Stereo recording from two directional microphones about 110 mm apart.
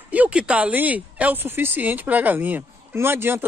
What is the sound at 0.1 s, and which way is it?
Speech, 10° right (ahead or behind).